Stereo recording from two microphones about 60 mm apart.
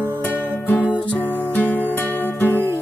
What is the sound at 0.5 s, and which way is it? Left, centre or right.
Music, left.